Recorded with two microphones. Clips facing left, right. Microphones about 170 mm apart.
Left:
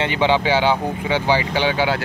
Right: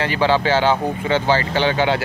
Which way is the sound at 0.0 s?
20° left (ahead or behind).